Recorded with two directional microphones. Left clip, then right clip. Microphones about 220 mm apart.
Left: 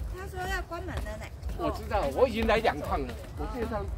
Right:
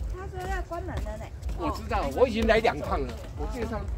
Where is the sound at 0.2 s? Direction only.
25° left (ahead or behind).